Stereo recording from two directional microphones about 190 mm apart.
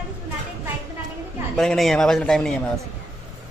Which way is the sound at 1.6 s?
Centre (ahead or behind).